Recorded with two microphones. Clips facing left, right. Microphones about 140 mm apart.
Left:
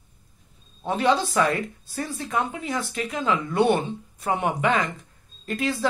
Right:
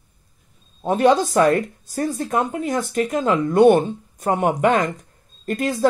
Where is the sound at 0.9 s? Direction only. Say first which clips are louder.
Right 6 dB; 45° right (ahead or behind).